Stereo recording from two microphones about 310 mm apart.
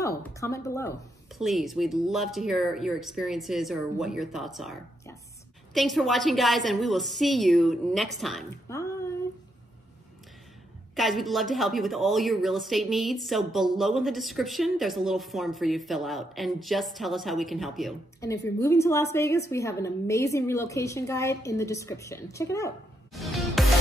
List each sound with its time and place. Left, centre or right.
0.2 s a woman's voice: centre
11.0 s a woman's voice: centre
23.1 s music: centre